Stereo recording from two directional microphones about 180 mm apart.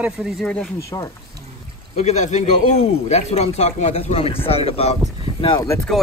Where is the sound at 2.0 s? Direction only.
40° left (ahead or behind).